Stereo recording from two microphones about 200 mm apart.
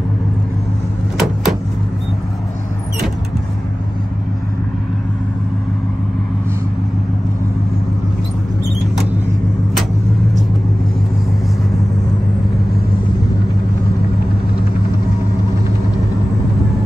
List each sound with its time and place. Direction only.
1.1 s vehicle: centre (ahead or behind)